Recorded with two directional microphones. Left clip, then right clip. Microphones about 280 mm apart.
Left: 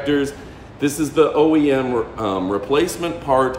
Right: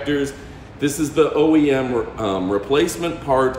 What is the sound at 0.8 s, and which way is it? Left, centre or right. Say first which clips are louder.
A man's voice: left 1 dB; centre.